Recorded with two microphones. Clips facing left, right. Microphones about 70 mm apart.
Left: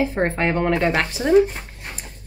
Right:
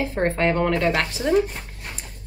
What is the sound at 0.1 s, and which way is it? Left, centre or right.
Speech, centre.